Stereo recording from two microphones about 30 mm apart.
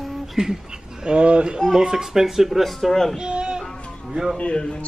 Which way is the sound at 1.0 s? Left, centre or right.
Right.